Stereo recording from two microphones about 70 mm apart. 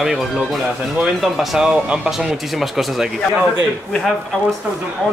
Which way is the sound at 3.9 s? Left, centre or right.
Centre.